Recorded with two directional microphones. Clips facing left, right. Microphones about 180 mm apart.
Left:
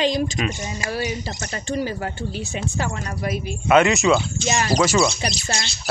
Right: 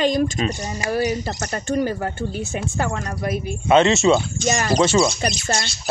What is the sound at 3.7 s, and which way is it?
Speech, 25° right (ahead or behind).